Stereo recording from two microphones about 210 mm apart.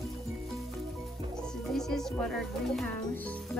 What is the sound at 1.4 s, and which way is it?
Speech, centre (ahead or behind).